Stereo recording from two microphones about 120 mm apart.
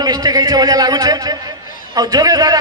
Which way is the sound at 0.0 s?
35° right (ahead or behind).